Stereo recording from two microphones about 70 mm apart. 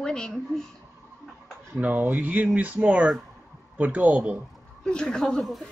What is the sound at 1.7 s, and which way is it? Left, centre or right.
Speech, right.